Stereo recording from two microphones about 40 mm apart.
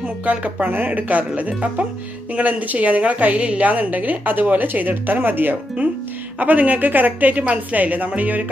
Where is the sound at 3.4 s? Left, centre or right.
Right.